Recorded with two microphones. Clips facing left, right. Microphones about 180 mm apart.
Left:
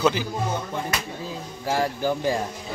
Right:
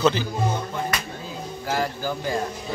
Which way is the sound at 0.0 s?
10° left (ahead or behind).